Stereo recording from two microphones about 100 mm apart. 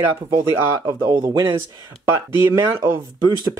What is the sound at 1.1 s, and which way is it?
Speech, 50° right (ahead or behind).